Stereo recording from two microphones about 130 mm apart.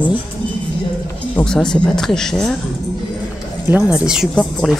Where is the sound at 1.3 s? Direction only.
5° left (ahead or behind).